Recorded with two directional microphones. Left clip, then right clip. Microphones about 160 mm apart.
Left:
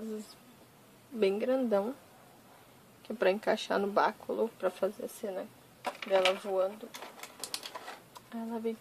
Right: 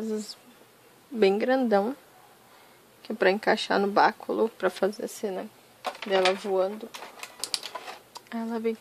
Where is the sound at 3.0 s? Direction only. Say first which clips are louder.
Right 6 dB; 35° right (ahead or behind).